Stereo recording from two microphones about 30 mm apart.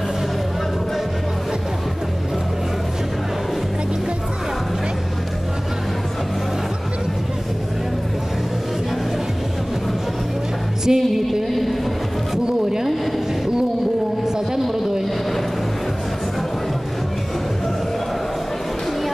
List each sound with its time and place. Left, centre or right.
10.9 s music: centre